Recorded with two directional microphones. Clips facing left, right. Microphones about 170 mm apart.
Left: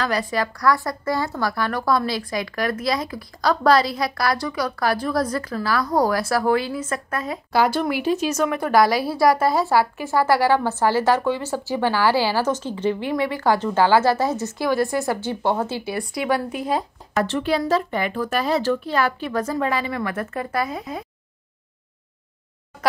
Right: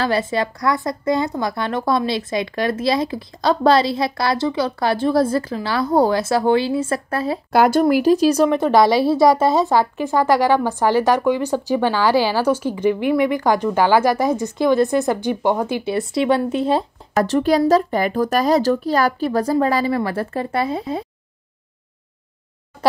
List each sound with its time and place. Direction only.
0.0 s speech: 25° right (ahead or behind)
7.5 s speech: 50° right (ahead or behind)
7.8 s a woman's voice: 40° right (ahead or behind)
17.1 s speech: 40° right (ahead or behind)